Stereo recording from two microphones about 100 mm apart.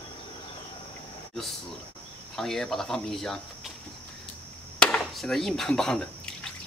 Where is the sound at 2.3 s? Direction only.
5° left (ahead or behind).